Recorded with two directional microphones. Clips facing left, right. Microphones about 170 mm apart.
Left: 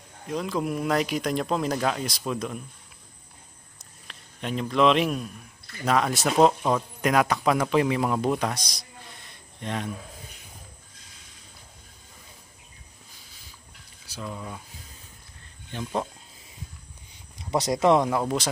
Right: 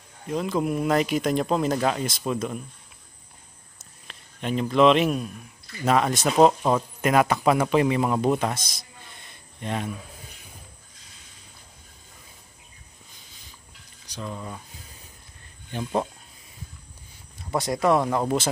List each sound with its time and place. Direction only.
0.3 s speech: centre (ahead or behind)
4.1 s a man's voice: centre (ahead or behind)
8.7 s a sound: 5° right (ahead or behind)
14.1 s speech: centre (ahead or behind)
15.7 s speech: 10° right (ahead or behind)
17.4 s speech: 20° left (ahead or behind)